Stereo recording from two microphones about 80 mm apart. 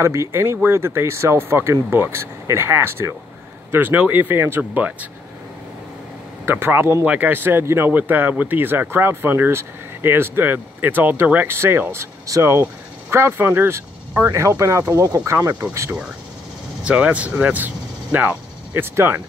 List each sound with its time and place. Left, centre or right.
0.0 s speech: right
6.4 s speech: right
16.8 s speech: centre